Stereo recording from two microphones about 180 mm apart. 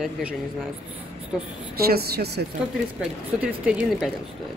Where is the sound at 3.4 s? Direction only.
5° right (ahead or behind).